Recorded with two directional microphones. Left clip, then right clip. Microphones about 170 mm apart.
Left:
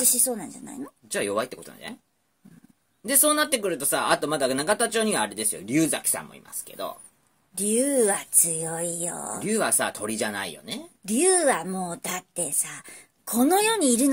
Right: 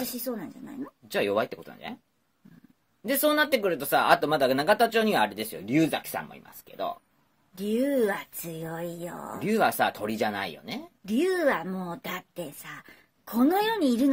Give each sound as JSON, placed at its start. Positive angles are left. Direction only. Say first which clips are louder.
{"t": 0.1, "sound": "speech", "louder": "left 6 dB", "side_deg": 35}
{"t": 1.0, "sound": "speech", "louder": "right 1 dB", "side_deg": -20}
{"t": 3.1, "sound": "speech", "louder": "even", "side_deg": -20}
{"t": 7.5, "sound": "speech", "louder": "left 3 dB", "side_deg": 35}
{"t": 9.4, "sound": "speech", "louder": "right 2 dB", "side_deg": -20}
{"t": 11.1, "sound": "speech", "louder": "left 3 dB", "side_deg": 35}